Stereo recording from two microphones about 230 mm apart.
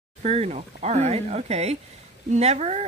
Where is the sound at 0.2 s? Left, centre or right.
Right.